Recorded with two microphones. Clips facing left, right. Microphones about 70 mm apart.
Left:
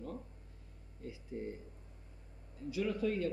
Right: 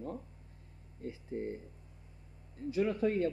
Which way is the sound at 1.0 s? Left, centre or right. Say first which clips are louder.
Right 4 dB; right.